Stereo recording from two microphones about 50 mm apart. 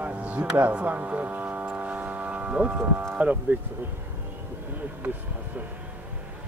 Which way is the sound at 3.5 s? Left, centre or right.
Right.